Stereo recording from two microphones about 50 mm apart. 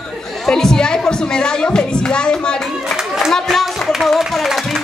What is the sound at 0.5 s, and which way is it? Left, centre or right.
A woman's voice, centre.